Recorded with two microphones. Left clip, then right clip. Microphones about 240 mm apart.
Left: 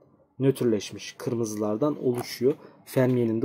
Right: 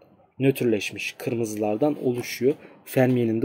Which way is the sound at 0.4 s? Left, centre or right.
Centre.